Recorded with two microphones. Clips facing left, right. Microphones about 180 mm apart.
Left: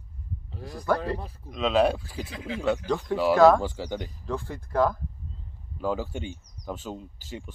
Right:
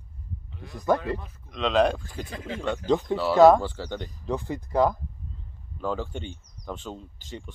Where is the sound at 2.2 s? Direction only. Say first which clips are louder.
Even; 45° right (ahead or behind).